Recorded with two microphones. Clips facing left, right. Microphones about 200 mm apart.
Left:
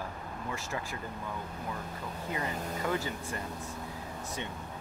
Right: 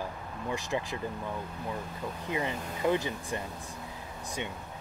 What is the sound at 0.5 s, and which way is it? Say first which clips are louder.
Speech: right 7 dB; 15° right (ahead or behind).